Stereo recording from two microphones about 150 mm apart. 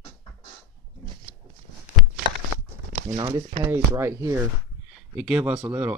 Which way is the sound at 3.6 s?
15° right (ahead or behind).